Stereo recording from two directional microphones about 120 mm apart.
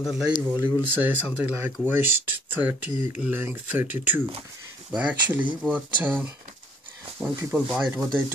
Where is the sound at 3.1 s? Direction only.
15° right (ahead or behind).